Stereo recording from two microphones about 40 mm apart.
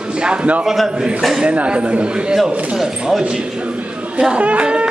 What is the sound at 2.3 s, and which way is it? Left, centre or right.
Speech, centre.